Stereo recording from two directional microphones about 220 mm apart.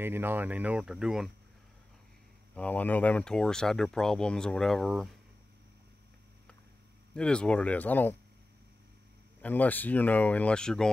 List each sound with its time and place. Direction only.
0.0 s speech: 10° right (ahead or behind)
2.5 s speech: 5° left (ahead or behind)
7.2 s speech: 5° left (ahead or behind)
9.4 s speech: 5° left (ahead or behind)